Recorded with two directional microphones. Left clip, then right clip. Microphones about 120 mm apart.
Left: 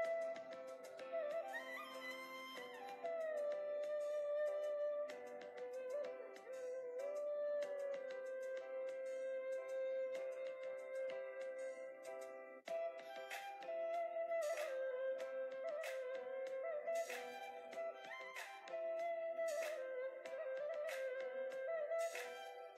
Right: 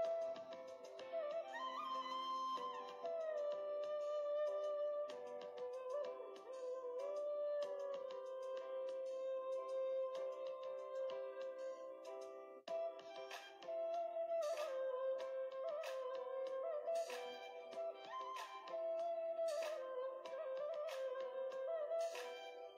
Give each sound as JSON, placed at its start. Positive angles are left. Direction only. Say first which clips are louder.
{"t": 0.0, "sound": "music", "louder": "even", "side_deg": 20}
{"t": 12.6, "sound": "music", "louder": "even", "side_deg": 15}
{"t": 18.7, "sound": "music", "louder": "even", "side_deg": 15}